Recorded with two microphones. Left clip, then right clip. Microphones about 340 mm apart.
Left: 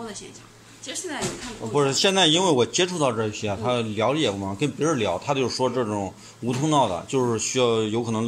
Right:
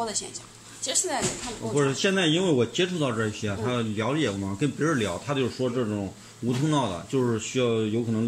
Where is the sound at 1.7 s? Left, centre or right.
Centre.